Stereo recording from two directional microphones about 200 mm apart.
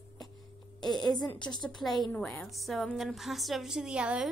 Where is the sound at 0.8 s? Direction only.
Centre (ahead or behind).